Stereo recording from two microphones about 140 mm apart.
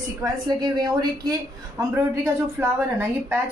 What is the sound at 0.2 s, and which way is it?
A woman's voice, 30° right (ahead or behind).